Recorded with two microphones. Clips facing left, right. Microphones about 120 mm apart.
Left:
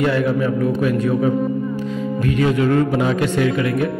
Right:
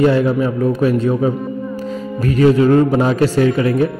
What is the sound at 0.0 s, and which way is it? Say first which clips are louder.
A man's voice: right 4 dB; 30° right (ahead or behind).